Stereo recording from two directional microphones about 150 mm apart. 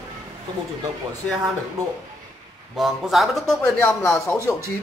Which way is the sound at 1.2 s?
5° left (ahead or behind).